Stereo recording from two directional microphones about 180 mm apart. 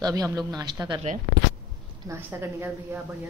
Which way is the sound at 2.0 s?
15° right (ahead or behind).